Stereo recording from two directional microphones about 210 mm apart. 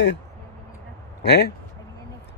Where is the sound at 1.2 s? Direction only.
50° left (ahead or behind).